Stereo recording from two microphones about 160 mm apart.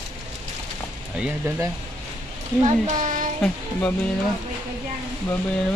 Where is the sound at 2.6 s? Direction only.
50° right (ahead or behind).